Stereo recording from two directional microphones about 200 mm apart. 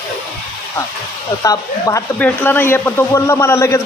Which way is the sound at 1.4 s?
15° left (ahead or behind).